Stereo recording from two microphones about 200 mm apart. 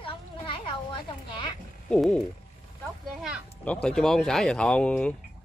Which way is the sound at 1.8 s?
5° left (ahead or behind).